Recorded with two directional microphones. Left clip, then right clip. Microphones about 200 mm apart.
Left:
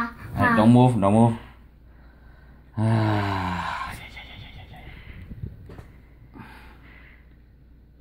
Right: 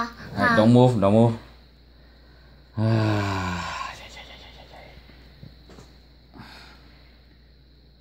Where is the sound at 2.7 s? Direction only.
20° right (ahead or behind).